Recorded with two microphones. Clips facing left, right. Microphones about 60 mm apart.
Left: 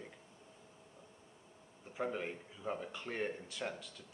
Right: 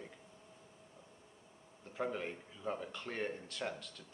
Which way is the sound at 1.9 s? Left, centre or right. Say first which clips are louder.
Even; centre.